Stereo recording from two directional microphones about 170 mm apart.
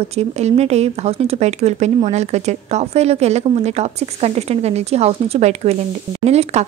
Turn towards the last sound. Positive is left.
turn(degrees=-40)  # may be behind; listen again after turning